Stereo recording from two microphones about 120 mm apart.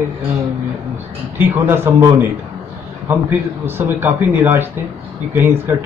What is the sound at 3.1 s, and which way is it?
A man's voice, 20° right (ahead or behind).